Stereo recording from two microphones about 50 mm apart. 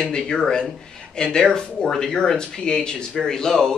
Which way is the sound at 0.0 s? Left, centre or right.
Centre.